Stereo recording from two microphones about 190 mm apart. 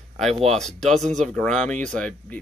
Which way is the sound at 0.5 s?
Centre (ahead or behind).